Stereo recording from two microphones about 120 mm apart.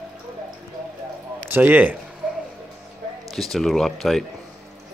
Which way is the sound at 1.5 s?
15° right (ahead or behind).